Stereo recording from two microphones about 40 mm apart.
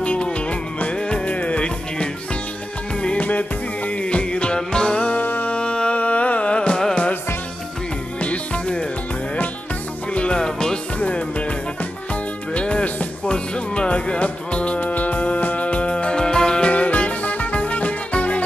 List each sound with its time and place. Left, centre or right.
0.0 s music: left
3.0 s music: left
3.3 s music: left
3.9 s music: left
5.0 s music: left
5.5 s music: left
8.2 s music: left
10.1 s music: left
11.0 s music: left
14.8 s music: left
16.7 s music: left